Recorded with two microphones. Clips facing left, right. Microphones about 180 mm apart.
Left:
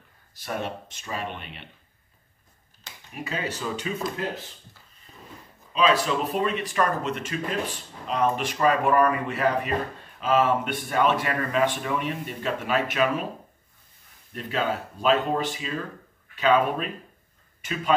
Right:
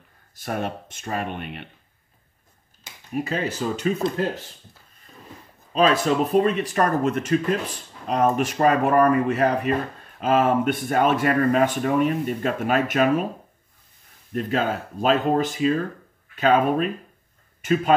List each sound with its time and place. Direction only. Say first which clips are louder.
0.3 s speech: right 3 dB; 50° right (ahead or behind)
3.1 s speech: right 6 dB; 40° right (ahead or behind)
5.7 s speech: right 3 dB; 45° right (ahead or behind)
14.3 s speech: right 4 dB; 45° right (ahead or behind)